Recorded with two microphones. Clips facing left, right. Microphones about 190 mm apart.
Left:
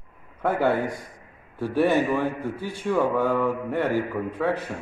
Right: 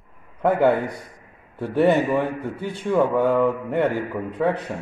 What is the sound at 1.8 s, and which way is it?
A man's voice, 60° right (ahead or behind).